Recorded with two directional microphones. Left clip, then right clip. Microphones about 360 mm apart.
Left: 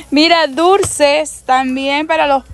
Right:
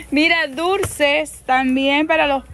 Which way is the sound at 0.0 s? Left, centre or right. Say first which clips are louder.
Left 6 dB; centre.